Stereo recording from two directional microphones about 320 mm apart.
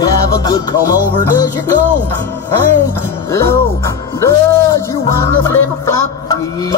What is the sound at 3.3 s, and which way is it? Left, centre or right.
Music, centre.